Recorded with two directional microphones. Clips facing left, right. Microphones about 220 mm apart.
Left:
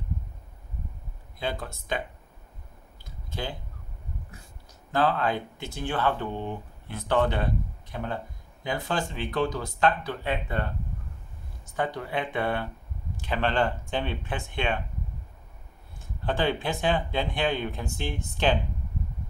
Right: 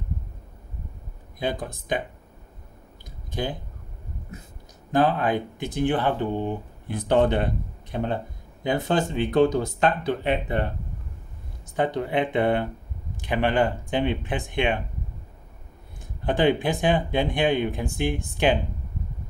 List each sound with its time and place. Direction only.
1.4 s speech: 15° right (ahead or behind)
3.3 s a sound: 15° right (ahead or behind)
4.9 s speech: 15° right (ahead or behind)
11.7 s speech: 20° right (ahead or behind)
16.3 s speech: 15° right (ahead or behind)